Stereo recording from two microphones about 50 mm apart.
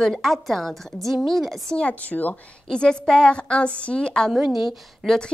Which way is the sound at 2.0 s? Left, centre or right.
Left.